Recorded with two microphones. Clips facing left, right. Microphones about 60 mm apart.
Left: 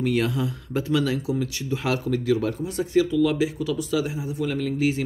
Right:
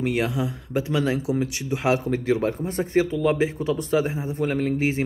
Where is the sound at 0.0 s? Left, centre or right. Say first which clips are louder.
Even; right.